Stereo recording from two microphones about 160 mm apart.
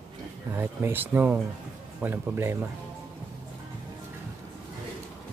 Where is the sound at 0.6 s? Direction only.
15° right (ahead or behind).